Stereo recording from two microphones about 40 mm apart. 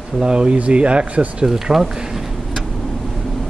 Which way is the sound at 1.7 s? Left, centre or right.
Centre.